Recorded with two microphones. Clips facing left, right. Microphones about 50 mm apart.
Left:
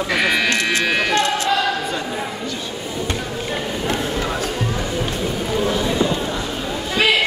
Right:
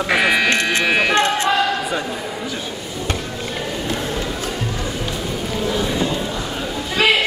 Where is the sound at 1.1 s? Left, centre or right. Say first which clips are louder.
Right 2 dB; right.